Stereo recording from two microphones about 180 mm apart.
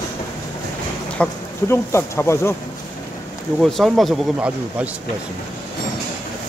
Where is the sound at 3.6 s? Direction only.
Centre (ahead or behind).